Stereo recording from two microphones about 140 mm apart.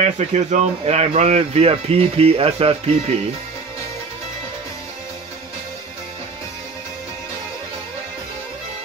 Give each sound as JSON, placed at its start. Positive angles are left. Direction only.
{"t": 0.0, "sound": "speech", "side_deg": -55}